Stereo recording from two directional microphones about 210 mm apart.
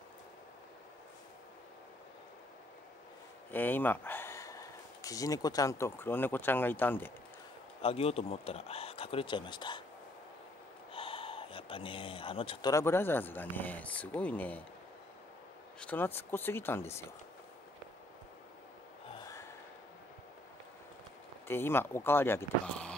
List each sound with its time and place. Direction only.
3.5 s speech: 10° left (ahead or behind)
7.8 s speech: 30° left (ahead or behind)
10.9 s a sound: 25° left (ahead or behind)
12.7 s speech: 10° left (ahead or behind)
15.8 s speech: 5° left (ahead or behind)
19.2 s gasp: 15° left (ahead or behind)
21.5 s speech: 10° left (ahead or behind)